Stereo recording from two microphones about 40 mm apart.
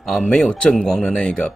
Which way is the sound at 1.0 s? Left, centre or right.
Left.